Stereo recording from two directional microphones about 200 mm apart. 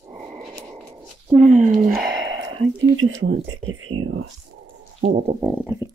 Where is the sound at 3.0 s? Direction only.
75° right (ahead or behind).